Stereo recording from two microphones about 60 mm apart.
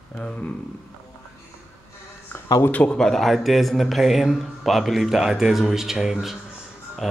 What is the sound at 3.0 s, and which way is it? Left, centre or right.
Speech, centre.